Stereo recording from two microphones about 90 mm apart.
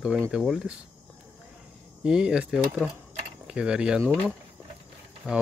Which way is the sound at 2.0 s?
10° right (ahead or behind).